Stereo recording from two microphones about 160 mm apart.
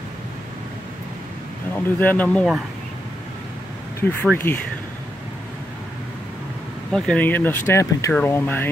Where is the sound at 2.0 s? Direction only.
10° left (ahead or behind).